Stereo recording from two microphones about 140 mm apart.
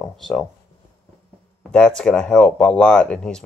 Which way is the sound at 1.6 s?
5° left (ahead or behind).